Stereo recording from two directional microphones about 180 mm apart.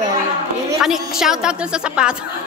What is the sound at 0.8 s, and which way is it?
A woman's voice, centre (ahead or behind).